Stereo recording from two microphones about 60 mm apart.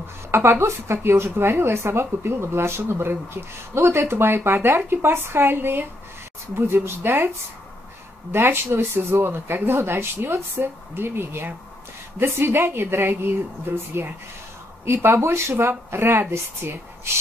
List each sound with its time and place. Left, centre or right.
0.3 s speech: right
8.3 s speech: right
14.9 s speech: right